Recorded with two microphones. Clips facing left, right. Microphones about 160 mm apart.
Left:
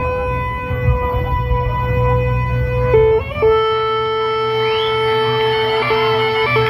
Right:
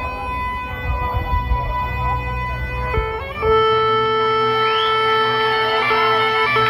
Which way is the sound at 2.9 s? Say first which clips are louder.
Left 14 dB; 20° left (ahead or behind).